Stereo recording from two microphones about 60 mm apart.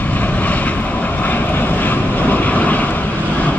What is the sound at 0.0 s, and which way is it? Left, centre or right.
Vehicle, left.